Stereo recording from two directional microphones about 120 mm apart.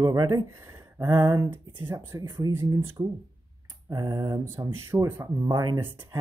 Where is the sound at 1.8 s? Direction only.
20° right (ahead or behind).